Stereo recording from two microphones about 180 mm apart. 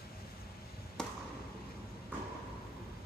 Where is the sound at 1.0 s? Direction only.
5° left (ahead or behind).